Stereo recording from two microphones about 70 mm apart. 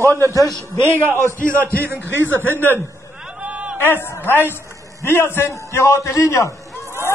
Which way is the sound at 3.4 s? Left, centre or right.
Centre.